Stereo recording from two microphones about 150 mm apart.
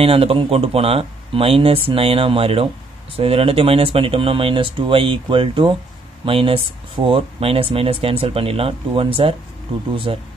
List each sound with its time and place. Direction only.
0.0 s speech: 40° right (ahead or behind)